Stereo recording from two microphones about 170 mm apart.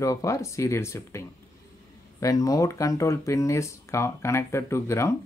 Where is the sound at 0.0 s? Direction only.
20° left (ahead or behind).